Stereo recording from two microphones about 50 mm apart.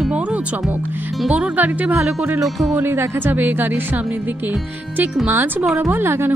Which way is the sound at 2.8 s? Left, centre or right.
Right.